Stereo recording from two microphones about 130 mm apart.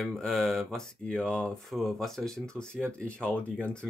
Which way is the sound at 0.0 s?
5° left (ahead or behind).